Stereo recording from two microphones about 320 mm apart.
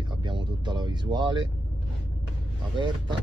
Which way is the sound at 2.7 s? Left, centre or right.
Centre.